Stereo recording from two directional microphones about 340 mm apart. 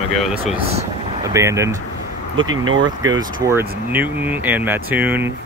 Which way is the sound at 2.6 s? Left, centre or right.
Right.